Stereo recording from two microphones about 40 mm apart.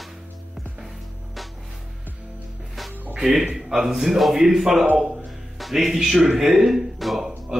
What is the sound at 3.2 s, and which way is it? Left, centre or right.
A man's voice, centre.